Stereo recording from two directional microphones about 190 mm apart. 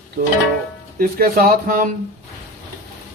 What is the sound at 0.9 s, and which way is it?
Speech, 50° right (ahead or behind).